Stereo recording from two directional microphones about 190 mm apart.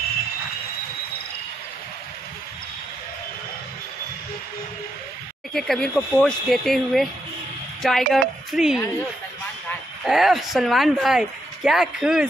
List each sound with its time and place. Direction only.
5.5 s a woman's voice: centre (ahead or behind)
10.0 s speech: centre (ahead or behind)